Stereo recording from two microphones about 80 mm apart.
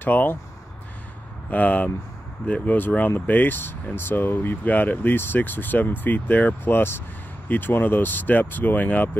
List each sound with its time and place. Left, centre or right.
0.0 s speech: left
1.5 s speech: left